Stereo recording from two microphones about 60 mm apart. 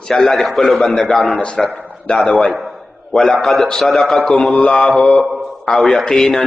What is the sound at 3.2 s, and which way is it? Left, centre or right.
A man's voice, centre.